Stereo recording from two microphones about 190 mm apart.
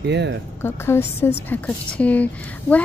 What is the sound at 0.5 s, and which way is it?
A woman's voice, 10° left (ahead or behind).